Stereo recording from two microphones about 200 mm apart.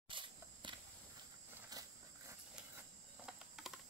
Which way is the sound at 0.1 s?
25° right (ahead or behind).